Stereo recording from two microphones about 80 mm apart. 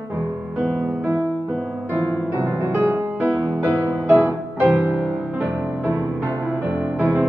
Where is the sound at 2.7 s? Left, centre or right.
Right.